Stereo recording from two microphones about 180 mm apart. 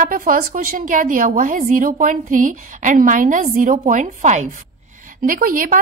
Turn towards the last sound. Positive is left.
turn(degrees=-50)  # may be behind; listen again after turning